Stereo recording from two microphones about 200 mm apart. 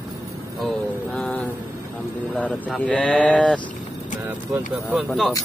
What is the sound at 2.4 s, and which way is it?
Speech, 5° left (ahead or behind).